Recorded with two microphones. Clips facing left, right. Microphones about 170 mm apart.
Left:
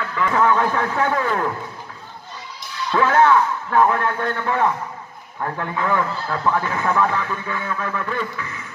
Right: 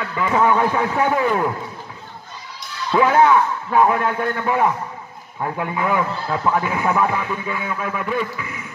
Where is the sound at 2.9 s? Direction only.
15° right (ahead or behind).